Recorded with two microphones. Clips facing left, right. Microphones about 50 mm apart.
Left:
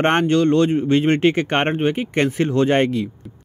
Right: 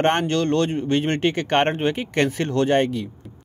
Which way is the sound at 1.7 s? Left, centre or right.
Centre.